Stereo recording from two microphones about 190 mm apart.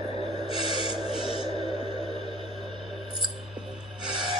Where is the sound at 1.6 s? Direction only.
30° left (ahead or behind).